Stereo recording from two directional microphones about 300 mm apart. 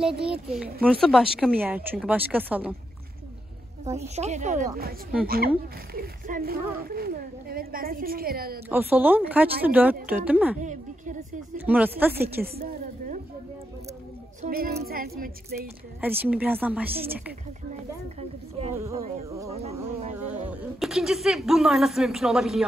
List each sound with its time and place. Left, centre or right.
0.5 s speech: centre
4.0 s speech: right
8.6 s speech: centre
10.6 s a woman's voice: right
11.5 s speech: centre
12.4 s a sound: right
14.4 s speech: right
16.0 s speech: centre
18.6 s speech: centre
19.5 s speech: right
20.2 s speech: centre